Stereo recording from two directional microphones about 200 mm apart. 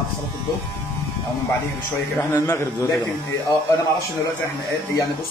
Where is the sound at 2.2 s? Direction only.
15° left (ahead or behind).